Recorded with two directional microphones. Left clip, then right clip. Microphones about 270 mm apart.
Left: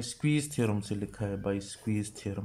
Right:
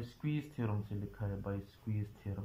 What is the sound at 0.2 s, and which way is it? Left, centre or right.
Speech, centre.